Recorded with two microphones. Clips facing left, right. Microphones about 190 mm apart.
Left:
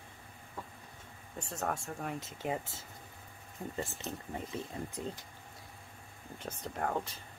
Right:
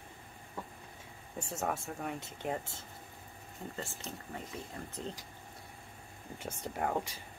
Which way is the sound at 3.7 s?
20° left (ahead or behind).